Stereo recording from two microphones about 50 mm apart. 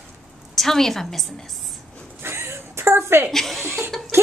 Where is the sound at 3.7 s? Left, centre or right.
Right.